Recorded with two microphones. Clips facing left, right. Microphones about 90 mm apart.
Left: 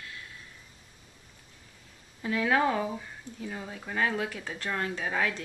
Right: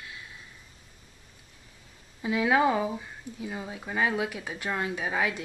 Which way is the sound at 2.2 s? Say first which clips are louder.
Right 2 dB; 10° right (ahead or behind).